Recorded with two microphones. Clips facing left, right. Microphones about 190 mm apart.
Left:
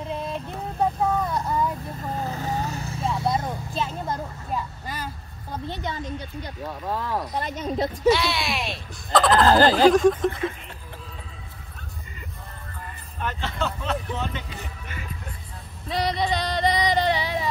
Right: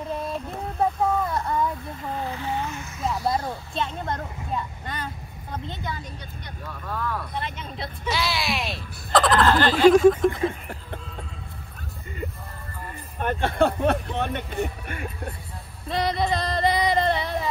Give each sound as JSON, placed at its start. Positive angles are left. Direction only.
{"t": 0.1, "sound": "child singing", "side_deg": 0}
{"t": 2.1, "sound": "vehicle", "side_deg": 40}
{"t": 3.3, "sound": "vehicle", "side_deg": 0}
{"t": 5.7, "sound": "speech", "side_deg": 20}
{"t": 7.3, "sound": "speech", "side_deg": 40}
{"t": 8.1, "sound": "speech", "side_deg": 0}
{"t": 9.4, "sound": "speech", "side_deg": 35}
{"t": 9.9, "sound": "speech", "side_deg": -5}
{"t": 13.2, "sound": "speech", "side_deg": -55}
{"t": 15.9, "sound": "female singing", "side_deg": 0}